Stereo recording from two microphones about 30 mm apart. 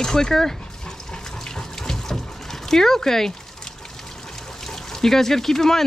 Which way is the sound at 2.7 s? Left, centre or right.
Centre.